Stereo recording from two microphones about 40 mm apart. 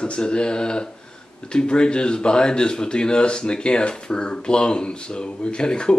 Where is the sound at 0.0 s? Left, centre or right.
Left.